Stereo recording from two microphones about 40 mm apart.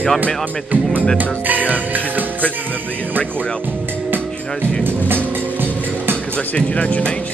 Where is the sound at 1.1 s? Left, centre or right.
Right.